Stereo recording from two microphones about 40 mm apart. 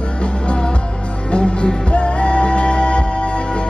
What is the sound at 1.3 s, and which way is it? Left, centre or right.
Music, left.